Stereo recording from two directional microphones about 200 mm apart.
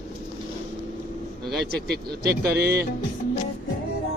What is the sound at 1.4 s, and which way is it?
Speech, 55° right (ahead or behind).